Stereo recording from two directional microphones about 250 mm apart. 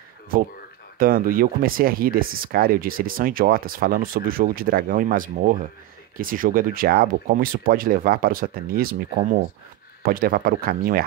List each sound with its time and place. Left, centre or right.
0.9 s speech: right